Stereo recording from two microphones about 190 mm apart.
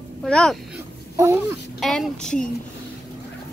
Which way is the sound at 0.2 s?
5° left (ahead or behind).